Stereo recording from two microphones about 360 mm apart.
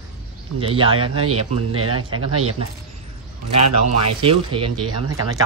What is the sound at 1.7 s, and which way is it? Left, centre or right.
A man's voice, right.